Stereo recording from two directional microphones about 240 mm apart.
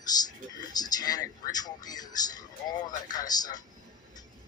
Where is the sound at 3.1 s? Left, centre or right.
Centre.